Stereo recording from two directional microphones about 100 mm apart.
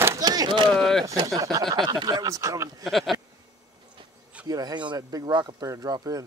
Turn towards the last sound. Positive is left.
turn(degrees=-35)  # may be behind; listen again after turning